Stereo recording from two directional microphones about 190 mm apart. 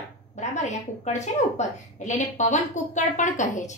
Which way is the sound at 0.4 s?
35° left (ahead or behind).